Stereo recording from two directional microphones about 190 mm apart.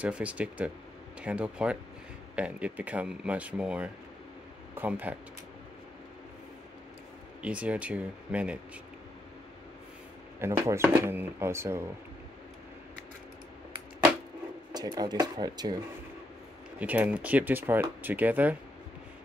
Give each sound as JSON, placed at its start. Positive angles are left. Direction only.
{"t": 0.0, "sound": "speech", "side_deg": -5}
{"t": 7.4, "sound": "speech", "side_deg": -5}
{"t": 10.4, "sound": "speech", "side_deg": -15}
{"t": 14.7, "sound": "speech", "side_deg": -20}
{"t": 16.7, "sound": "speech", "side_deg": -10}